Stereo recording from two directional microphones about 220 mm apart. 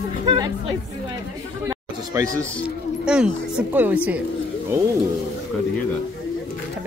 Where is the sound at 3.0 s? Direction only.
5° right (ahead or behind).